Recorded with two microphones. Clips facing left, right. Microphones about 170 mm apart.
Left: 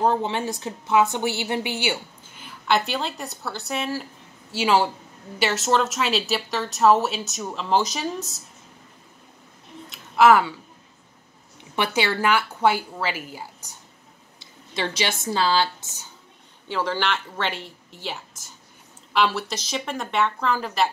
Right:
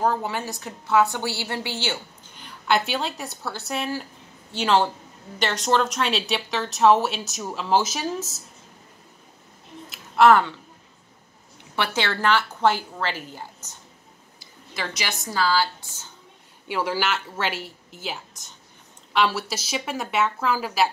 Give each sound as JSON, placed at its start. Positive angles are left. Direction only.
{"t": 0.0, "sound": "a woman's voice", "side_deg": 25}
{"t": 2.3, "sound": "a woman's voice", "side_deg": 0}
{"t": 9.8, "sound": "a sound", "side_deg": 5}
{"t": 11.7, "sound": "a woman's voice", "side_deg": 15}
{"t": 14.4, "sound": "a woman's voice", "side_deg": 25}
{"t": 16.6, "sound": "a woman's voice", "side_deg": -10}